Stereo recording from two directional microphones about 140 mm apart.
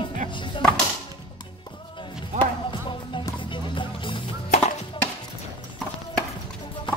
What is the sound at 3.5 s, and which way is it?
Music, 35° left (ahead or behind).